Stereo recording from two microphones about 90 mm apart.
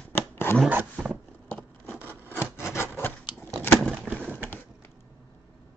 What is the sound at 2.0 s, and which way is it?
Rub, 25° left (ahead or behind).